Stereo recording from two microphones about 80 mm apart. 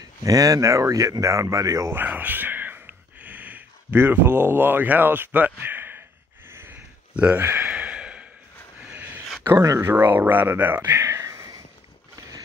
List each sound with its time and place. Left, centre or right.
0.0 s speech: right
1.9 s a sound: right
9.6 s speech: right
9.8 s speech: right